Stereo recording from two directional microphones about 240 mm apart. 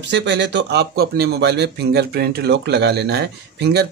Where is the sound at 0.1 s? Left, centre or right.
Right.